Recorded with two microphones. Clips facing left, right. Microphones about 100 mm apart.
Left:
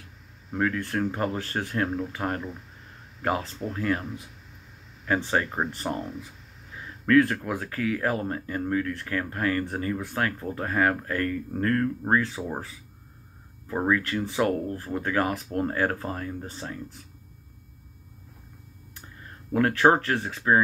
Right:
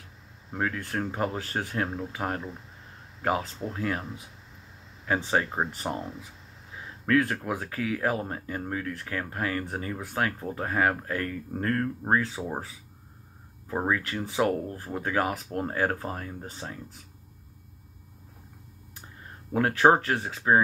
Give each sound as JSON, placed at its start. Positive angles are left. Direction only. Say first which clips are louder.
{"t": 0.6, "sound": "speech", "louder": "left 4 dB", "side_deg": -10}
{"t": 5.0, "sound": "speech", "louder": "left 1 dB", "side_deg": -10}
{"t": 7.1, "sound": "speech", "louder": "left 4 dB", "side_deg": -10}
{"t": 19.5, "sound": "speech", "louder": "even", "side_deg": -10}